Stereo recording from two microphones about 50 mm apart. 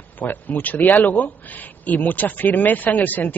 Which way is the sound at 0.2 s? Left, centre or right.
Left.